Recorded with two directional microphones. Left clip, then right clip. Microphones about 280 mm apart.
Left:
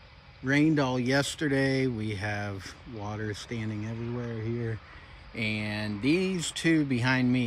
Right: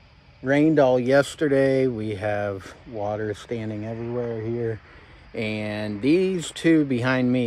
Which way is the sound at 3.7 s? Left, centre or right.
Right.